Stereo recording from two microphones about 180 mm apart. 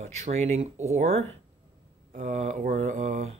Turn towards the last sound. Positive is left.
turn(degrees=-45)  # may be behind; listen again after turning